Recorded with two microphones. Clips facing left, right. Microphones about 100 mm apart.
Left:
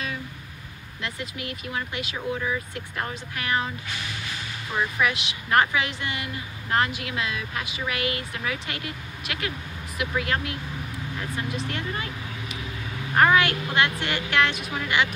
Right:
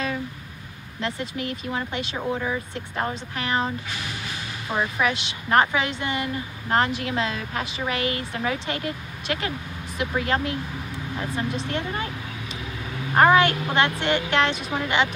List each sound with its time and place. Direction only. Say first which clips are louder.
1.0 s speech: right 5 dB; 35° right (ahead or behind)
4.7 s a woman's voice: right 1 dB; 25° right (ahead or behind)
13.1 s speech: right 3 dB; 30° right (ahead or behind)